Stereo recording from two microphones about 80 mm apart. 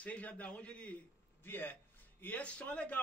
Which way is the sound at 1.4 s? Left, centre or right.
Left.